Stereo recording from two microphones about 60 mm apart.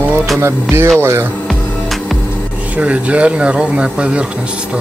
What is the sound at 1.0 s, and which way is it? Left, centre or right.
Speech, right.